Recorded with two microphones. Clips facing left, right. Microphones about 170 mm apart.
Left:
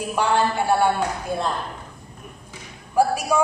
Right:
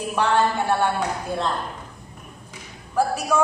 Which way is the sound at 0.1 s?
10° left (ahead or behind).